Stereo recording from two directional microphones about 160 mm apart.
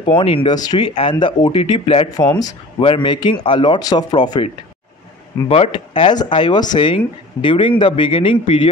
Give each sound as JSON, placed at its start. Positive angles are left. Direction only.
{"t": 0.0, "sound": "speech", "side_deg": 30}
{"t": 5.5, "sound": "speech", "side_deg": 35}